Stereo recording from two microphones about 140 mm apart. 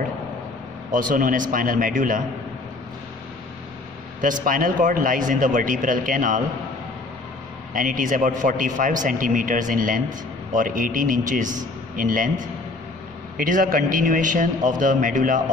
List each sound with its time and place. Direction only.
0.9 s a man's voice: 75° right (ahead or behind)
4.2 s a man's voice: 75° right (ahead or behind)
7.7 s a man's voice: 70° right (ahead or behind)